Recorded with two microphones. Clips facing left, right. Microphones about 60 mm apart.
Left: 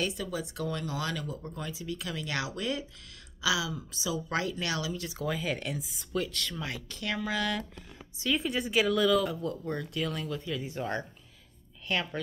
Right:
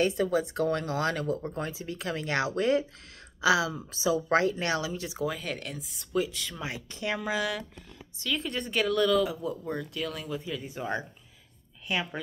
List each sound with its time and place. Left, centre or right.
0.0 s a woman's voice: right
5.2 s speech: centre
6.2 s speech: centre
8.2 s speech: centre
10.2 s speech: centre
10.5 s speech: centre